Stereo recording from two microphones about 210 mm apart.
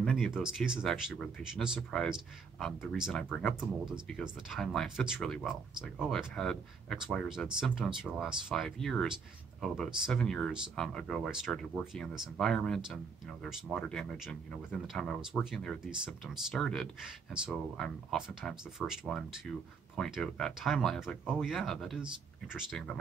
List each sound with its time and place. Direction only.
0.0 s speech: centre (ahead or behind)